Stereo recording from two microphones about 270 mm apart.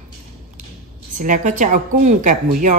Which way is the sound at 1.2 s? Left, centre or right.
Right.